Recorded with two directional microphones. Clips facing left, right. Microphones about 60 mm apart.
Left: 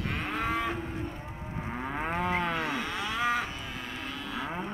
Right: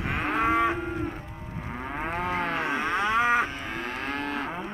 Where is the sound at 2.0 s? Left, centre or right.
Right.